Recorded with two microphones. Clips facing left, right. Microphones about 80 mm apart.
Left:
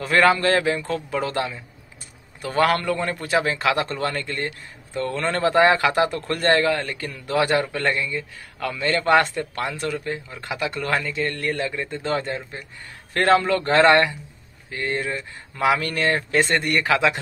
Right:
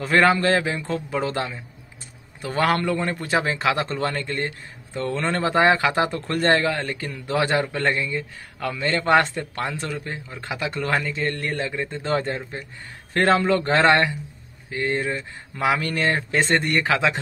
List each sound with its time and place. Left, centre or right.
0.0 s a man's voice: right